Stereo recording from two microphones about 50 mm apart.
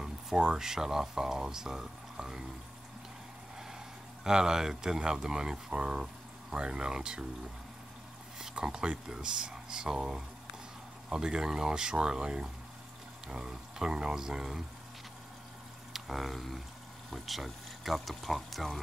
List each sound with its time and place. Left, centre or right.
0.0 s speech: centre
4.2 s speech: centre
8.4 s speech: centre
15.9 s speech: centre